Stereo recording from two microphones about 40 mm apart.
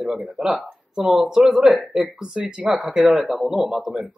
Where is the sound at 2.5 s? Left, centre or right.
Right.